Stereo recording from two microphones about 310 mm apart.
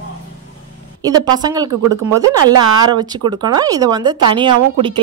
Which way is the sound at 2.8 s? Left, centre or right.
Centre.